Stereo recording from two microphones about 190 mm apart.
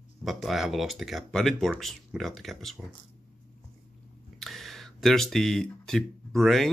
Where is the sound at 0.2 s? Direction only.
Centre (ahead or behind).